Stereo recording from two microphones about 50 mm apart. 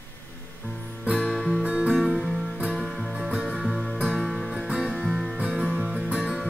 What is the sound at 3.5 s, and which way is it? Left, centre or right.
Music, centre.